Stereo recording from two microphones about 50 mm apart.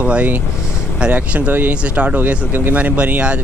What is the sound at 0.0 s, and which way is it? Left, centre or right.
Speech, right.